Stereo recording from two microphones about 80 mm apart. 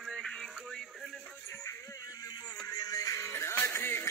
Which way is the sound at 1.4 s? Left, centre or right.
Left.